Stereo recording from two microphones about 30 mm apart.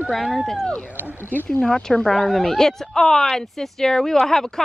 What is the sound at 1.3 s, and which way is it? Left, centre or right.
Speech, left.